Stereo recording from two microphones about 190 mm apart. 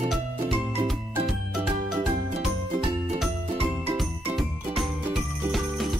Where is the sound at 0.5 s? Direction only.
30° right (ahead or behind).